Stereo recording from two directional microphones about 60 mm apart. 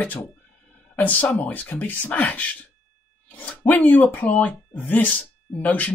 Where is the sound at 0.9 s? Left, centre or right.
Left.